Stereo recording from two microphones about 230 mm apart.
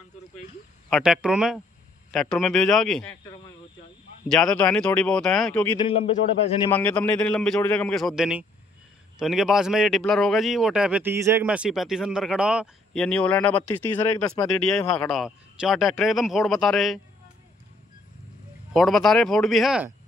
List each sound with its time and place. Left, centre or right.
0.8 s speech: centre
4.3 s speech: centre
5.9 s a man's voice: left
6.7 s speech: centre
18.7 s speech: centre